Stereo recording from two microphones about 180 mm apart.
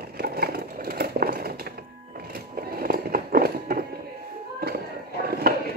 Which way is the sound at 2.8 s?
55° right (ahead or behind).